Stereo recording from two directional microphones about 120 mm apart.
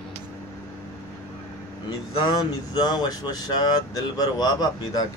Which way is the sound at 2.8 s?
35° left (ahead or behind).